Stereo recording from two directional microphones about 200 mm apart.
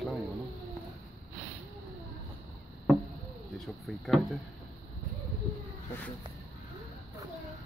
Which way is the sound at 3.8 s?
Centre (ahead or behind).